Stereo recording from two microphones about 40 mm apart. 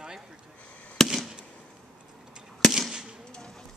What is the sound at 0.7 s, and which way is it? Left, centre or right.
Fireworks, left.